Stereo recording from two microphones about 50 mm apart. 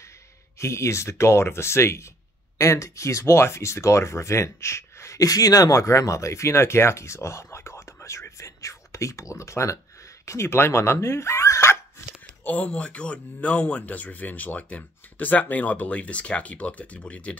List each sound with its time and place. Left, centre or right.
0.6 s speech: left
2.6 s speech: left
5.8 s speech: left
9.3 s speech: left
10.2 s speech: left
12.4 s speech: left